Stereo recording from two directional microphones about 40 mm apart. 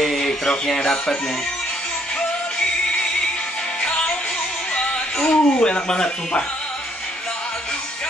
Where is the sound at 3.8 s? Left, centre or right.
Left.